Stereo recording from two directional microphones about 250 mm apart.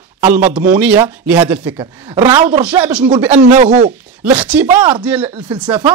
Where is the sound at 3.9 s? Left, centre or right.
Centre.